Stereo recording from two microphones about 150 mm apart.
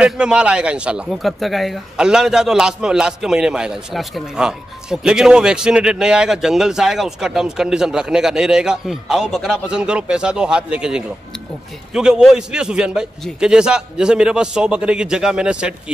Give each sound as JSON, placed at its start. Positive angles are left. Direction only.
{"t": 0.0, "sound": "a man's voice", "side_deg": -5}